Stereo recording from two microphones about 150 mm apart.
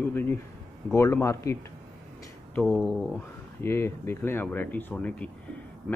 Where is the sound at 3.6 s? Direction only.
15° left (ahead or behind).